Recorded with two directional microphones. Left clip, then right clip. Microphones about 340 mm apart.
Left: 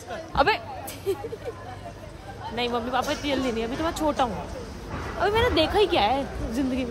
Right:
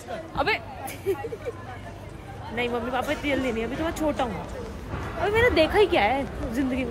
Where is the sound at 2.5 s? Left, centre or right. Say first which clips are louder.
Left 1 dB; centre.